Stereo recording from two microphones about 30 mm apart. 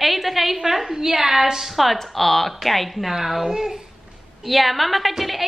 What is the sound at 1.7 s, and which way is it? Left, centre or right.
A woman's voice, centre.